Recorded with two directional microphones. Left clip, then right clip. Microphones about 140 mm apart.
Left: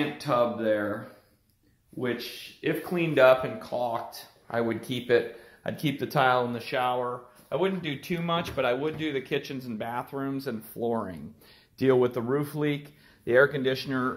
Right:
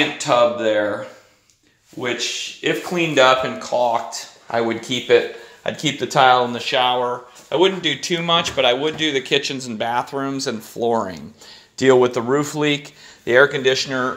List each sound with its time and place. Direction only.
0.2 s speech: 15° right (ahead or behind)
2.0 s speech: 10° right (ahead or behind); by 11.1 s 45° right (ahead or behind)
11.7 s speech: 35° right (ahead or behind)
13.2 s speech: 25° right (ahead or behind)